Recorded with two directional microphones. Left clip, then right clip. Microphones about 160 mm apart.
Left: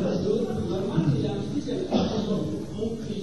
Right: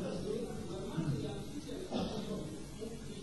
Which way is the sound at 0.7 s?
15° left (ahead or behind).